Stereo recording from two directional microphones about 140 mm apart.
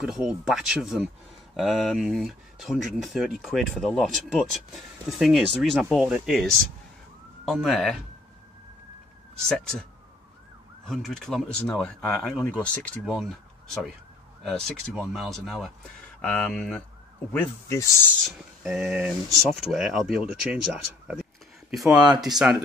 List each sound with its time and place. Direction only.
0.0 s speech: 5° right (ahead or behind)
9.4 s speech: 5° left (ahead or behind)
10.9 s speech: centre (ahead or behind)
14.4 s speech: centre (ahead or behind); by 17.9 s 20° left (ahead or behind)
18.2 s speech: 5° right (ahead or behind)